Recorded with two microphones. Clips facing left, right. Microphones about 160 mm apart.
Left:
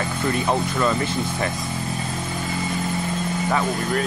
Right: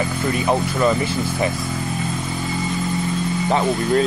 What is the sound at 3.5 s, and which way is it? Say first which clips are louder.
Speech: right 5 dB; 25° right (ahead or behind).